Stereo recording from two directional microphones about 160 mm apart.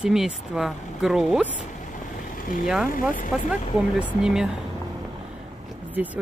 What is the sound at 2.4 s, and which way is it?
Boat, 55° left (ahead or behind).